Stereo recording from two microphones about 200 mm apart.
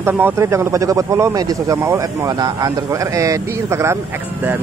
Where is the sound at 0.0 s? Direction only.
10° right (ahead or behind).